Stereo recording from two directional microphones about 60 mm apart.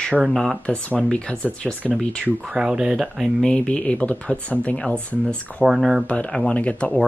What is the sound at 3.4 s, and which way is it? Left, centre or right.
Speech, centre.